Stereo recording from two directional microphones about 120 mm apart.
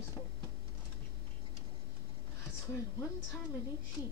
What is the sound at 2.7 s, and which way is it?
Speech, 25° left (ahead or behind).